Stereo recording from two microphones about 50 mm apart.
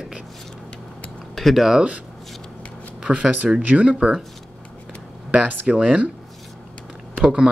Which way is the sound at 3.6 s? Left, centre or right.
Right.